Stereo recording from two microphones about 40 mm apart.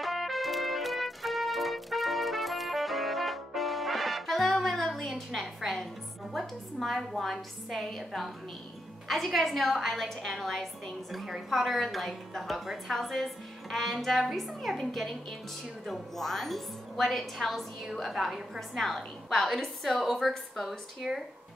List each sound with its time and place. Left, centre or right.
0.0 s music: centre
4.9 s a sound: centre
6.3 s a woman's voice: centre
18.8 s a woman's voice: centre
21.0 s speech: centre